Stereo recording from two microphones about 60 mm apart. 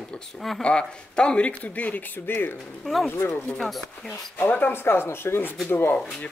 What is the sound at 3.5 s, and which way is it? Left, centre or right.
Speech, centre.